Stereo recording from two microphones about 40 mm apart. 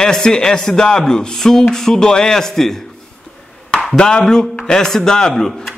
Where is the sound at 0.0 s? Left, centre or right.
Centre.